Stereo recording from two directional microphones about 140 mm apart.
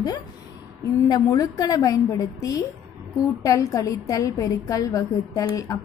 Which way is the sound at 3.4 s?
25° left (ahead or behind).